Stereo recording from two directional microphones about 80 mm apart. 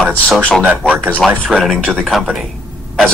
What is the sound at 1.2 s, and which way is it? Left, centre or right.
Speech, centre.